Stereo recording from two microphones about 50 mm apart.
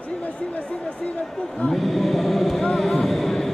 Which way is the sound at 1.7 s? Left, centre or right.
Centre.